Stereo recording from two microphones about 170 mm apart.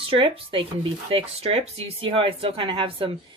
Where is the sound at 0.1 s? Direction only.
30° right (ahead or behind).